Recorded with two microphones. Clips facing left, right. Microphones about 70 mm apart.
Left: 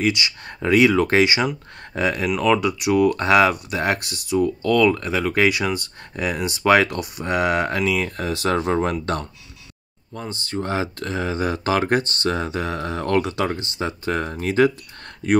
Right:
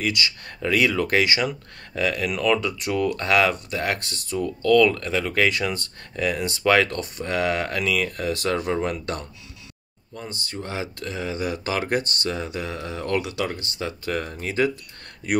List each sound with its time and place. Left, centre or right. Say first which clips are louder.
0.0 s speech: left 4 dB; left
2.3 s speech: left 3 dB; centre; by 8.8 s left
10.5 s speech: left 8 dB; left